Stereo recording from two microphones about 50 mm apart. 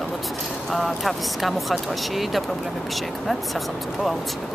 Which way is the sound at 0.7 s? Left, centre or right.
Centre.